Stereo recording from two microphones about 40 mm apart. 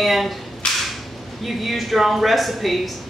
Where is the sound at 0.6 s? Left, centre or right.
Left.